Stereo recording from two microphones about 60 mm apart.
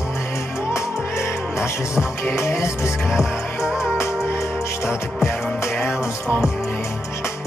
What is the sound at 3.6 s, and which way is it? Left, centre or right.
Music, centre.